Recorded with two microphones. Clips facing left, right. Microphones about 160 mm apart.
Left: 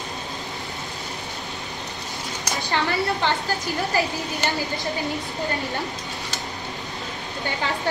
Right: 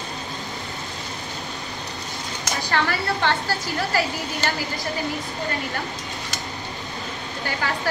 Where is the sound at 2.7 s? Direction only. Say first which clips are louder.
Left 1 dB; 15° left (ahead or behind).